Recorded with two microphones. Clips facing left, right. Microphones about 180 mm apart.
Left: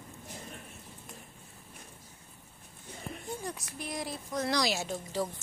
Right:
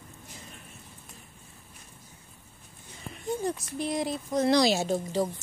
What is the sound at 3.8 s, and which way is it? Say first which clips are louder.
A woman's voice: right 8 dB; 25° right (ahead or behind).